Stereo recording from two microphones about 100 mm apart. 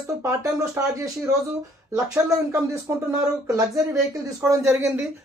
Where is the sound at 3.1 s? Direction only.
30° right (ahead or behind).